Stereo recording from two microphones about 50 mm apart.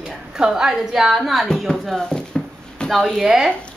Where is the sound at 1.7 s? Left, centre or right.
Centre.